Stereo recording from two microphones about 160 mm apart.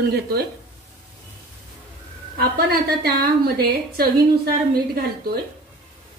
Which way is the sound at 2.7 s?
65° right (ahead or behind).